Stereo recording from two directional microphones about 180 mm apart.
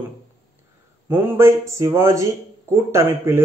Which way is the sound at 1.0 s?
10° right (ahead or behind).